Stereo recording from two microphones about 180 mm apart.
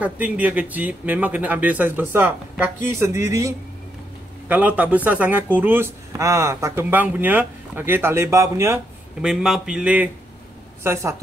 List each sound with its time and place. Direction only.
0.0 s speech: 10° right (ahead or behind)
9.2 s speech: 5° right (ahead or behind)